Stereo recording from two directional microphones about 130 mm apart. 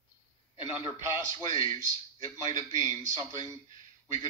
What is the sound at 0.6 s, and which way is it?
A man's voice, 45° left (ahead or behind).